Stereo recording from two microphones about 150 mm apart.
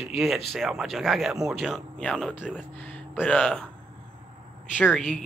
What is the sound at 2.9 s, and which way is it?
Speech, 10° left (ahead or behind).